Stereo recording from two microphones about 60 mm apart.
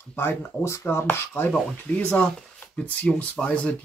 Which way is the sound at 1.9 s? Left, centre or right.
Centre.